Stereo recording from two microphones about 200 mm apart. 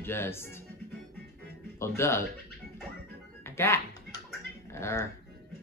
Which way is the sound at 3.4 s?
15° left (ahead or behind).